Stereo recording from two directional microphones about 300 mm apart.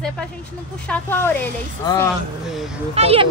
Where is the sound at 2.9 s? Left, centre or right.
Centre.